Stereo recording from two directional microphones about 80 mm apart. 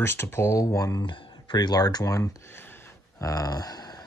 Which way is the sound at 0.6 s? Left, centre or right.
Left.